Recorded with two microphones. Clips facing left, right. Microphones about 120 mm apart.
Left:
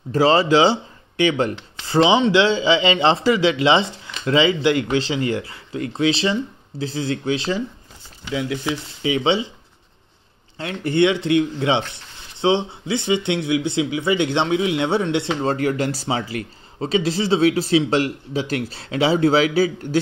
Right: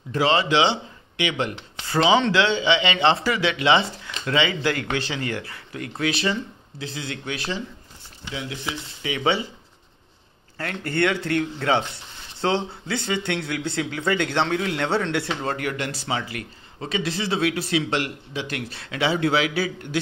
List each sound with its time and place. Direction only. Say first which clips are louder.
0.1 s speech: left 5 dB; 35° left (ahead or behind)
1.9 s speech: left 3 dB; 25° left (ahead or behind)
9.0 s speech: left 4 dB; 25° left (ahead or behind)
10.6 s speech: left 5 dB; 20° left (ahead or behind); by 20.0 s 35° left (ahead or behind)